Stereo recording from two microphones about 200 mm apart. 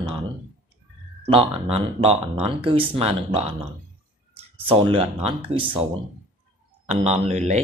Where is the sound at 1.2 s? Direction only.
30° right (ahead or behind).